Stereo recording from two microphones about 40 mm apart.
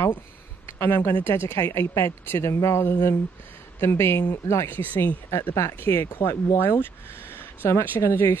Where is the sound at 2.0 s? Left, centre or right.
Left.